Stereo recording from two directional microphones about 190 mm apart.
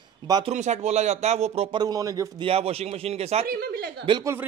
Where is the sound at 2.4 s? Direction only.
30° right (ahead or behind).